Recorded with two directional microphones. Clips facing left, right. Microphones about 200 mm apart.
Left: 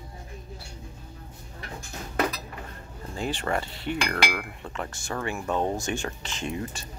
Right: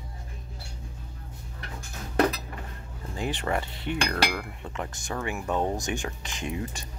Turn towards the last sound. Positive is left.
turn(degrees=-15)  # may be behind; listen again after turning